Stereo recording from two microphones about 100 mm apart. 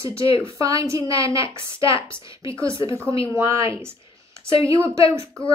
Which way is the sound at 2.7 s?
55° left (ahead or behind).